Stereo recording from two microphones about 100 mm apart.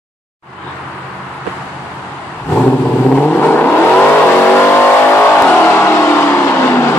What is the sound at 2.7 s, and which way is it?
Vehicle, 20° left (ahead or behind).